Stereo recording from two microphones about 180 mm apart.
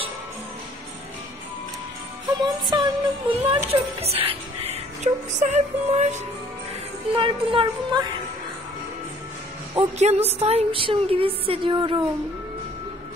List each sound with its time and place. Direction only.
2.2 s music: 25° right (ahead or behind)
4.0 s speech: 35° right (ahead or behind)
7.2 s music: 30° right (ahead or behind)
9.9 s speech: 35° right (ahead or behind)